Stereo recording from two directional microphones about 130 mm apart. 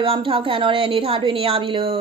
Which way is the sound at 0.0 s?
45° right (ahead or behind).